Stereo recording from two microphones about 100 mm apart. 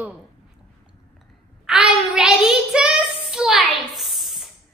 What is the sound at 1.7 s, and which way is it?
Child singing, 5° right (ahead or behind).